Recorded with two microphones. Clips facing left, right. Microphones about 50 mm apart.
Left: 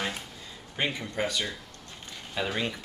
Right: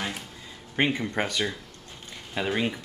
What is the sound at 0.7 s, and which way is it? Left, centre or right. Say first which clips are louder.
Speech: right 6 dB; right.